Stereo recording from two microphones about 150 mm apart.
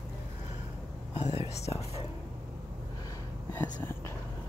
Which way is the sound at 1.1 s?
45° left (ahead or behind).